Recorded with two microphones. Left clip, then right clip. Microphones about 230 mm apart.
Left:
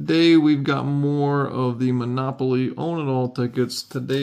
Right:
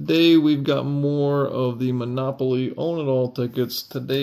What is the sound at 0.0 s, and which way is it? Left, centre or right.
Speech, left.